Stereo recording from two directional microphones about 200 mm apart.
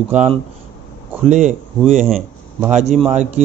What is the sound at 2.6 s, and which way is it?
Speech, 35° right (ahead or behind).